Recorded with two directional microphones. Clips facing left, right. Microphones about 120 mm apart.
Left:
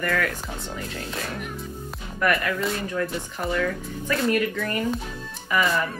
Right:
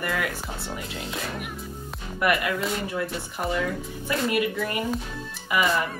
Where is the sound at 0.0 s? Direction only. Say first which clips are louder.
Left 3 dB; 15° right (ahead or behind).